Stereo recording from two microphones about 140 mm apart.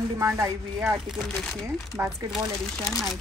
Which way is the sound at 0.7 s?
5° right (ahead or behind).